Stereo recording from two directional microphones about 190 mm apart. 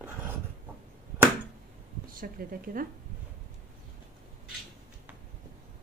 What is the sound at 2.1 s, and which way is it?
Speech, 50° right (ahead or behind).